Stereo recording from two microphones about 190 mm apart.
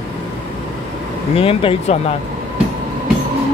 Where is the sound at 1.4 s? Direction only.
30° left (ahead or behind).